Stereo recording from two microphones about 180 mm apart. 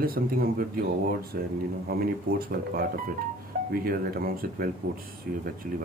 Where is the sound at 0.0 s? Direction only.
55° right (ahead or behind).